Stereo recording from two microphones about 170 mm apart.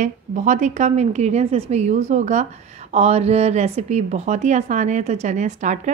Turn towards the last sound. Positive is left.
turn(degrees=-45)  # may be behind; listen again after turning